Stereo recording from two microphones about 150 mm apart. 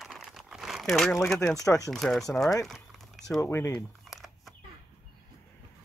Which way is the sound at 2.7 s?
Centre (ahead or behind).